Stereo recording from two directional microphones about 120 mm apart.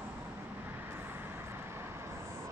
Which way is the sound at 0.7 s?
20° right (ahead or behind).